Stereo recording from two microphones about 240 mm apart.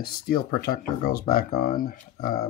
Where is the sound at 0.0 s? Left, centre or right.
Left.